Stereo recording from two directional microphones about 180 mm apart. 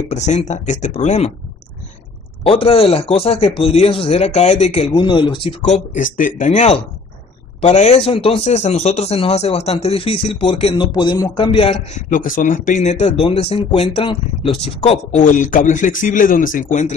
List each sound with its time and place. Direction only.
0.1 s speech: 40° left (ahead or behind)
2.4 s speech: 30° left (ahead or behind)
5.9 s speech: 50° left (ahead or behind); by 12.0 s 35° left (ahead or behind)
12.1 s speech: 50° left (ahead or behind)